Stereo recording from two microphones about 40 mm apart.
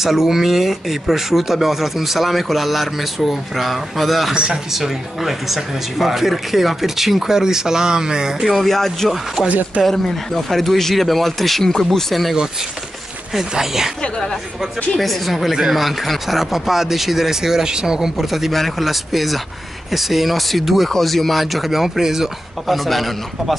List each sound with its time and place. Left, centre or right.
0.0 s speech: centre
4.3 s speech: centre
4.7 s speech: centre
8.4 s speech: centre
8.6 s speech: centre
9.1 s speech: centre
9.8 s speech: centre
13.3 s speech: centre
15.0 s speech: centre
15.5 s speech: centre
22.7 s speech: centre